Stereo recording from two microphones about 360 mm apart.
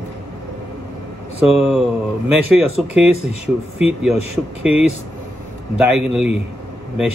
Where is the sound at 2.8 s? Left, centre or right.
Centre.